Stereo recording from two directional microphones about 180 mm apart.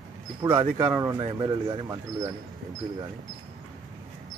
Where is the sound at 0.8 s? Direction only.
15° right (ahead or behind).